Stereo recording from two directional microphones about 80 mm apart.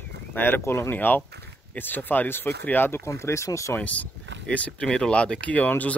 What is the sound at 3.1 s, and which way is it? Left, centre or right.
Speech, left.